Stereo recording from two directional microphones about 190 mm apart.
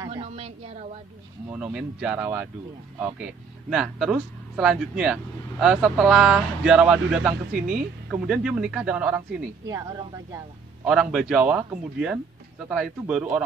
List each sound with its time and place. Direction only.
0.0 s a woman's voice: 25° right (ahead or behind)
1.5 s speech: 5° right (ahead or behind)
3.7 s speech: 5° right (ahead or behind)
9.7 s speech: 20° right (ahead or behind)
10.9 s speech: 5° right (ahead or behind)